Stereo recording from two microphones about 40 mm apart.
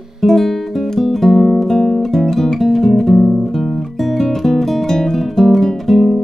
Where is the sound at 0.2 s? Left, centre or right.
Centre.